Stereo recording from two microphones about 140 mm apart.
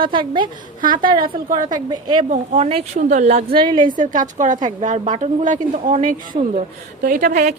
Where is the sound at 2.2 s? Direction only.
55° right (ahead or behind).